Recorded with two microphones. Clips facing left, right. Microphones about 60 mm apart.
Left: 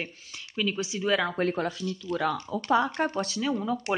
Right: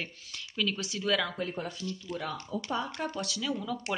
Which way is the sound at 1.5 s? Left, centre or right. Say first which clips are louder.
Left 7 dB; left.